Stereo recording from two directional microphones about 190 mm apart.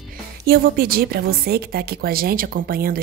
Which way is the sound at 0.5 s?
50° right (ahead or behind).